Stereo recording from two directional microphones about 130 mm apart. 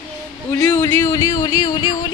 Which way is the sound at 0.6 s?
20° left (ahead or behind).